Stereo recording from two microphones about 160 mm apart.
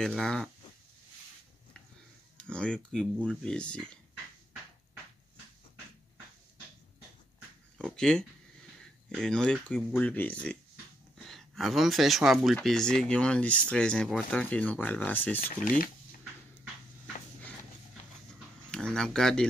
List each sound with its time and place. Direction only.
0.2 s speech: centre (ahead or behind)
2.3 s speech: 5° left (ahead or behind)
7.7 s speech: 5° left (ahead or behind)
15.4 s speech: 60° left (ahead or behind)
18.7 s speech: 5° left (ahead or behind)